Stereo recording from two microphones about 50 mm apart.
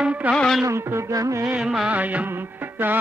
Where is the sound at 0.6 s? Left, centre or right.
Right.